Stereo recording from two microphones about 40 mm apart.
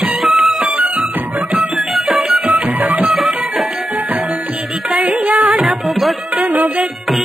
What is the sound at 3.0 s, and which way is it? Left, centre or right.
Music, centre.